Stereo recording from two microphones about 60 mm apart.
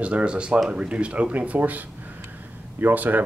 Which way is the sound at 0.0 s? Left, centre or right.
Centre.